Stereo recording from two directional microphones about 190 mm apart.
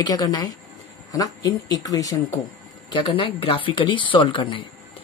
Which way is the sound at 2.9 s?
30° left (ahead or behind).